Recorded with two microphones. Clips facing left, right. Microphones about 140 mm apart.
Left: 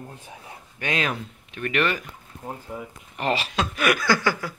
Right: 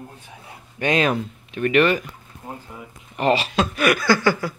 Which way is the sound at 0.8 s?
30° right (ahead or behind).